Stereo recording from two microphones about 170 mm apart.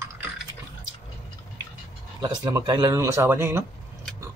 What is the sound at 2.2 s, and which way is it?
Speech, 25° right (ahead or behind).